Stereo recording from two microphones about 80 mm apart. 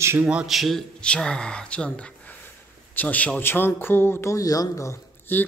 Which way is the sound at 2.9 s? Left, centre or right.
Centre.